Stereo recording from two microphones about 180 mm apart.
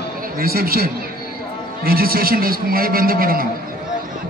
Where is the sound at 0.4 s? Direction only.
55° right (ahead or behind).